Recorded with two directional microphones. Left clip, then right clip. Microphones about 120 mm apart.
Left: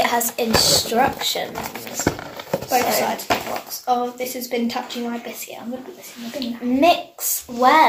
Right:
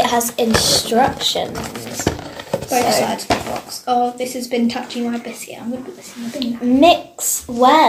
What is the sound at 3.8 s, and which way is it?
Speech, 40° left (ahead or behind).